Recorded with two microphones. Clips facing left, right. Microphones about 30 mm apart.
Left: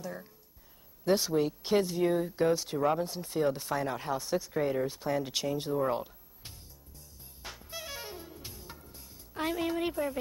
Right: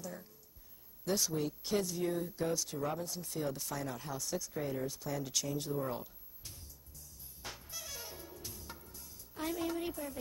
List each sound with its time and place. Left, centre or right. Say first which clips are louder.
0.0 s speech: left 5 dB; left
7.7 s music: left 6 dB; left